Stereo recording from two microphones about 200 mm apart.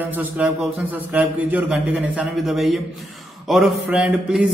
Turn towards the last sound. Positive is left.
turn(degrees=-5)  # may be behind; listen again after turning